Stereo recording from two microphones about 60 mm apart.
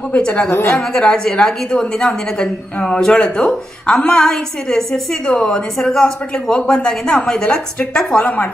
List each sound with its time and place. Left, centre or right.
0.1 s a woman's voice: centre